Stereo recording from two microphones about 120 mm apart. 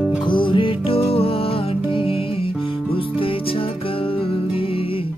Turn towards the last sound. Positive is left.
turn(degrees=50)  # may be behind; listen again after turning